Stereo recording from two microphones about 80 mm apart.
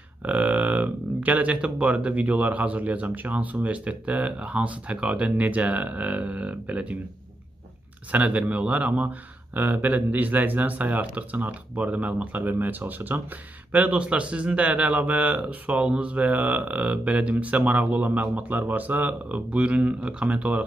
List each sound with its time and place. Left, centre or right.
0.2 s speech: centre
8.1 s speech: centre